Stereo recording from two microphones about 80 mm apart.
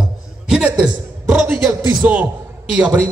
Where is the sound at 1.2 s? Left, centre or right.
Right.